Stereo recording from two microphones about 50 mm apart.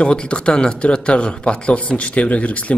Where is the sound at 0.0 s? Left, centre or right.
Centre.